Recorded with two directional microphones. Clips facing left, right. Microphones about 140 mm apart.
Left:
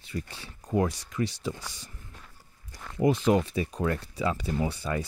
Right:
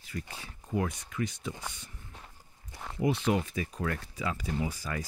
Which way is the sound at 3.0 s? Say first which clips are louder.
Left 5 dB; 45° left (ahead or behind).